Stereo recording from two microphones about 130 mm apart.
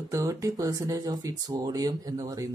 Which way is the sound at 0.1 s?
25° right (ahead or behind).